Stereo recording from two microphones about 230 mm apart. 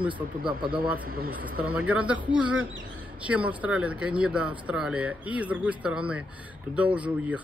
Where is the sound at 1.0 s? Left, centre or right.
Right.